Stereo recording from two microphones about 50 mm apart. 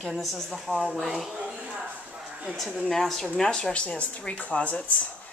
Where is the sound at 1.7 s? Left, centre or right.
Centre.